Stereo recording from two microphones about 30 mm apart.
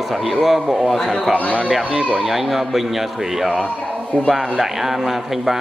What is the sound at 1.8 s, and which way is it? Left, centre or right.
Speech, right.